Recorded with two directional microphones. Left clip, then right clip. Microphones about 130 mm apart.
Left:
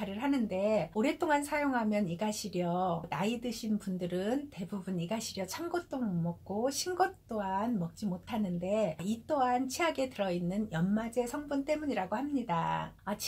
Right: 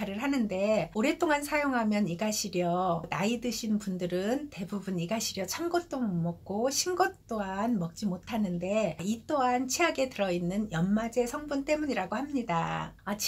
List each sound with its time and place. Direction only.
0.2 s speech: 25° right (ahead or behind)
5.7 s speech: 25° right (ahead or behind)